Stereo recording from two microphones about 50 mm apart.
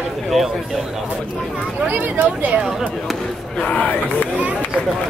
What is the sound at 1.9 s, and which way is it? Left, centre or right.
Speech, right.